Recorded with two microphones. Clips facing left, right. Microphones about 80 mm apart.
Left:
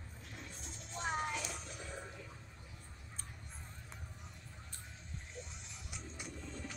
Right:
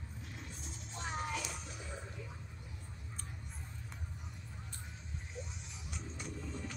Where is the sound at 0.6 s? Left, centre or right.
Centre.